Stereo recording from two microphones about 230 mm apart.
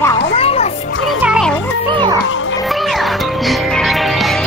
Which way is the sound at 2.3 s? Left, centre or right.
Left.